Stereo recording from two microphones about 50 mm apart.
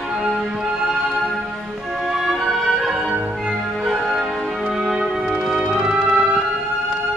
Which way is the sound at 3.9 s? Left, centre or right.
Centre.